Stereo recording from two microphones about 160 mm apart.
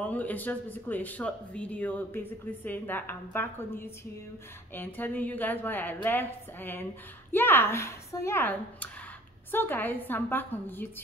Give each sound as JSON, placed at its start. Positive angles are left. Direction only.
{"t": 0.0, "sound": "speech", "side_deg": 10}